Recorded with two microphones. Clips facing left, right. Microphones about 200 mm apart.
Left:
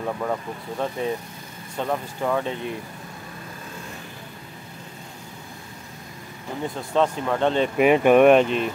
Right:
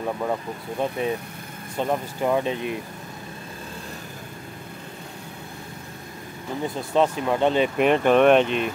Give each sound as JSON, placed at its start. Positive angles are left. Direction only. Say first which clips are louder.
{"t": 0.0, "sound": "speech", "louder": "even", "side_deg": -10}
{"t": 7.0, "sound": "speech", "louder": "right 1 dB", "side_deg": -10}
{"t": 7.7, "sound": "speech", "louder": "left 6 dB", "side_deg": 5}